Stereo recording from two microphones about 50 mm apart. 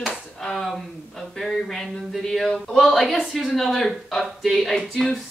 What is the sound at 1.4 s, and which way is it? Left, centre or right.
Speech, centre.